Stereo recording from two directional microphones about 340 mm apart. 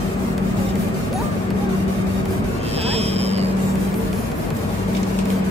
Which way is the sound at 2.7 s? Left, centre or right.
Centre.